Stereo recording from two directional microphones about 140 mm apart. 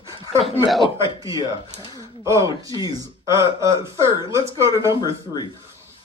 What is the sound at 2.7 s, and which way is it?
Speech, 35° left (ahead or behind).